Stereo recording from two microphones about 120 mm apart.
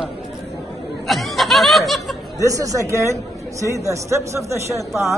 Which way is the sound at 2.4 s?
25° right (ahead or behind).